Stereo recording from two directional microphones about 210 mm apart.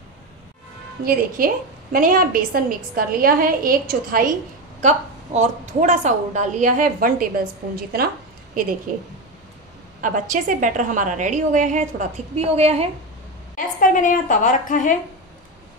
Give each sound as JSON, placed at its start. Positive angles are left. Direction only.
{"t": 1.0, "sound": "a woman's voice", "side_deg": -45}
{"t": 10.0, "sound": "a woman's voice", "side_deg": -40}
{"t": 13.6, "sound": "a woman's voice", "side_deg": 40}